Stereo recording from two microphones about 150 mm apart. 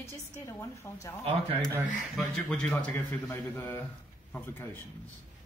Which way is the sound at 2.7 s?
15° left (ahead or behind).